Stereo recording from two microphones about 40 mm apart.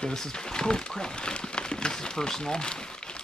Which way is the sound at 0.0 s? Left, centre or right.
Centre.